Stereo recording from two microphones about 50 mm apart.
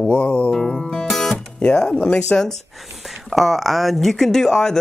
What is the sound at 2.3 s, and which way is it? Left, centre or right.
Music, centre.